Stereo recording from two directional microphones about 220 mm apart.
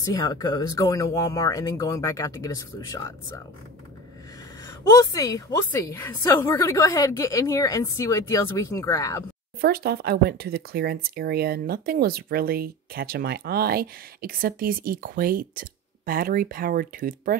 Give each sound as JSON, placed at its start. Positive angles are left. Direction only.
{"t": 0.0, "sound": "a woman's voice", "side_deg": 15}
{"t": 4.6, "sound": "a woman's voice", "side_deg": 15}
{"t": 9.6, "sound": "speech", "side_deg": -45}